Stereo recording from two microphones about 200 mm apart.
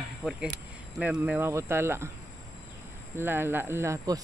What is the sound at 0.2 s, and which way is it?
Speech, 5° right (ahead or behind).